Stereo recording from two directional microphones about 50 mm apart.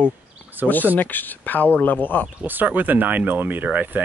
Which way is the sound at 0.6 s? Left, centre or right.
Right.